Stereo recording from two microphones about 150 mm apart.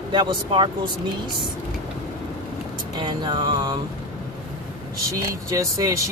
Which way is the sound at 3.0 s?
30° right (ahead or behind).